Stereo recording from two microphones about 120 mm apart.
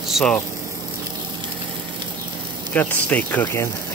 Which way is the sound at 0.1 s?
5° left (ahead or behind).